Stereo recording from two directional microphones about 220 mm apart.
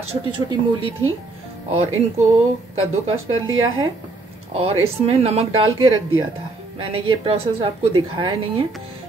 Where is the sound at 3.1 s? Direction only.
65° right (ahead or behind).